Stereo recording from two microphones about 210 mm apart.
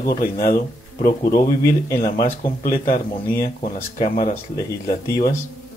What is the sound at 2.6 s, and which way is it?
Speech, 40° left (ahead or behind).